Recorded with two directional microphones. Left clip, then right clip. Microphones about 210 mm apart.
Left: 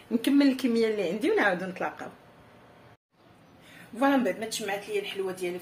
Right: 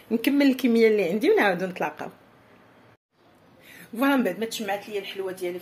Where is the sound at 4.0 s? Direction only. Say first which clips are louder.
Right 2 dB; 50° right (ahead or behind).